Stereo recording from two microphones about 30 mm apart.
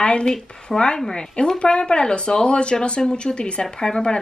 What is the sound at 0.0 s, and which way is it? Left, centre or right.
Speech, left.